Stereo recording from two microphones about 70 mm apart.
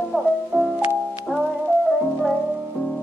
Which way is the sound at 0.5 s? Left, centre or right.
Right.